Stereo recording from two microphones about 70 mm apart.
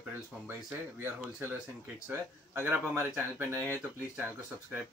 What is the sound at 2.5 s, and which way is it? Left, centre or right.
Speech, right.